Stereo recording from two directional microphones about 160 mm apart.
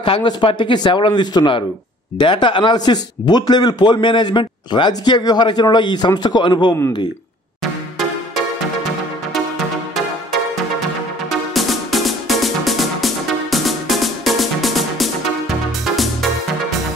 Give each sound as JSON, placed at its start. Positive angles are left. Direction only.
{"t": 0.0, "sound": "speech", "side_deg": 30}
{"t": 11.2, "sound": "music", "side_deg": 0}